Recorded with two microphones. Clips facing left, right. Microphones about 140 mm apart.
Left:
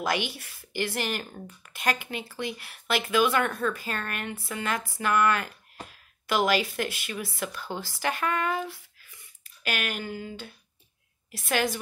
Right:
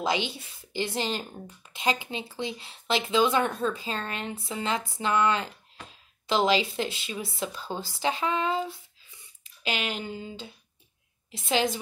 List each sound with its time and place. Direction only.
0.3 s speech: 20° right (ahead or behind)
5.9 s a sound: 25° right (ahead or behind)
6.7 s speech: 20° right (ahead or behind)